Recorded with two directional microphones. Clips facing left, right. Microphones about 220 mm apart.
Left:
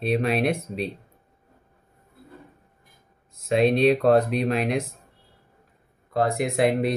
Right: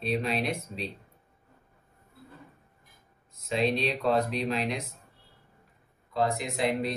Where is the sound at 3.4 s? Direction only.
55° left (ahead or behind).